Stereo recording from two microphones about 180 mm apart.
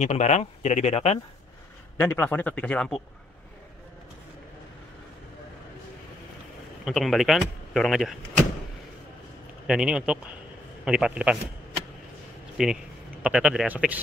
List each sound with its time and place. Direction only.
0.0 s speech: 40° left (ahead or behind)
2.0 s speech: 10° left (ahead or behind)
6.8 s speech: centre (ahead or behind)
9.7 s speech: 5° right (ahead or behind)
12.6 s speech: centre (ahead or behind)